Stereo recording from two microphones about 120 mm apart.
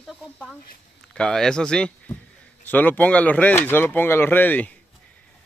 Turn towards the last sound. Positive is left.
turn(degrees=15)  # may be behind; listen again after turning